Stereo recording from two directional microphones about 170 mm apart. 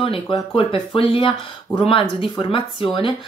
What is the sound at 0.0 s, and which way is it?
A woman's voice, 30° left (ahead or behind).